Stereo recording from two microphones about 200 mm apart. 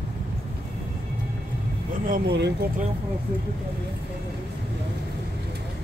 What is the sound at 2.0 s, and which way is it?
Speech, 50° right (ahead or behind).